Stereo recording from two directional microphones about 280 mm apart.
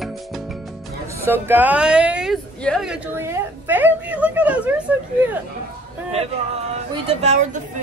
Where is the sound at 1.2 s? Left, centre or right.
Centre.